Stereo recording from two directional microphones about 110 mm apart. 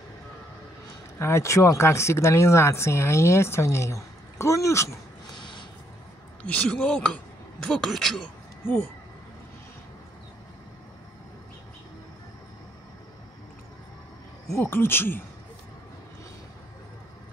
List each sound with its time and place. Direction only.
1.2 s speech: 25° left (ahead or behind)
5.3 s a sound: 45° left (ahead or behind)
6.4 s speech: 15° left (ahead or behind)
14.5 s speech: 20° left (ahead or behind)